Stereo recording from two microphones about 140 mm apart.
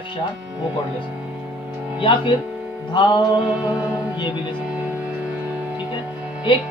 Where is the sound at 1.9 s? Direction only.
40° left (ahead or behind).